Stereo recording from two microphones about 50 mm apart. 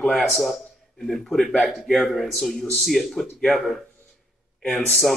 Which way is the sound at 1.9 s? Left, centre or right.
Centre.